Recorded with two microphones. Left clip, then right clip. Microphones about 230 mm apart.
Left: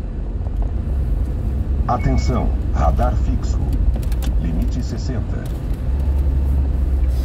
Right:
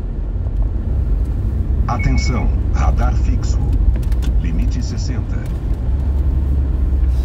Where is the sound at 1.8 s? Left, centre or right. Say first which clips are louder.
Left 1 dB; right.